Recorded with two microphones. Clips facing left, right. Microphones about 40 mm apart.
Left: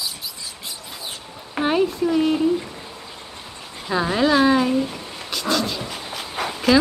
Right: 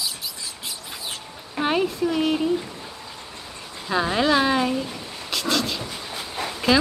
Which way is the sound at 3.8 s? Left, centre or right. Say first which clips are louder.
Left 2 dB; centre.